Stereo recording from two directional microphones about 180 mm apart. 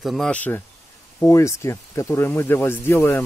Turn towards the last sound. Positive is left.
turn(degrees=15)  # may be behind; listen again after turning